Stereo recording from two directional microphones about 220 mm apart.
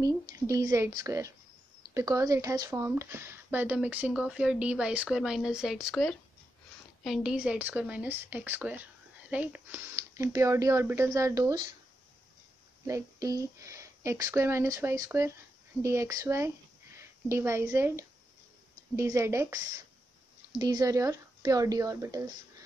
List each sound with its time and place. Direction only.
0.0 s speech: 15° right (ahead or behind)
12.8 s speech: 15° right (ahead or behind)